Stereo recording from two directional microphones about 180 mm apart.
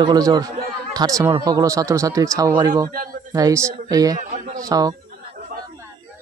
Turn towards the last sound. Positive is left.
turn(degrees=-20)  # may be behind; listen again after turning